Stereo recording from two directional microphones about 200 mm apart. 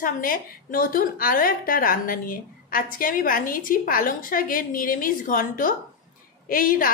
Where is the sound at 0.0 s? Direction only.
45° left (ahead or behind).